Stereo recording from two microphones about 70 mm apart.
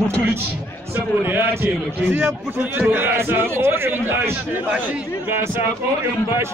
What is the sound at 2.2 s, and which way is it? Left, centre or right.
Speech, centre.